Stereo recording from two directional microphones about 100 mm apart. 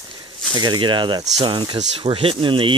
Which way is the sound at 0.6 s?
50° right (ahead or behind).